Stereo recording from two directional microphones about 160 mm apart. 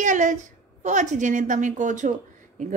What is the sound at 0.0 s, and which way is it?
A woman's voice, 50° right (ahead or behind).